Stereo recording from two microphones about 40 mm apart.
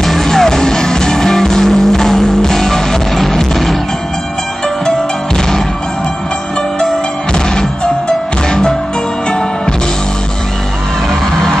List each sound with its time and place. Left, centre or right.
0.0 s music: centre
7.3 s music: centre